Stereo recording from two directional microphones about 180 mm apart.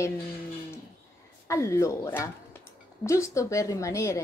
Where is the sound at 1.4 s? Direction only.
15° left (ahead or behind).